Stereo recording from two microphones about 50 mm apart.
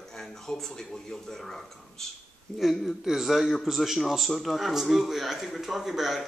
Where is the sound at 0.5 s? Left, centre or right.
Centre.